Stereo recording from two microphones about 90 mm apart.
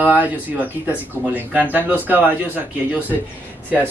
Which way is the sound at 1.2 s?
30° right (ahead or behind).